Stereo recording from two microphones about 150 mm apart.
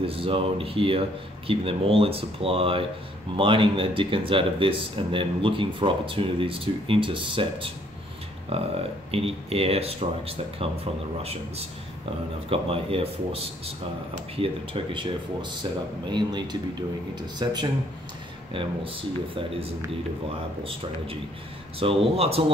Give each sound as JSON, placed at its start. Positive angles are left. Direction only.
{"t": 0.0, "sound": "speech", "side_deg": -35}
{"t": 21.7, "sound": "speech", "side_deg": -40}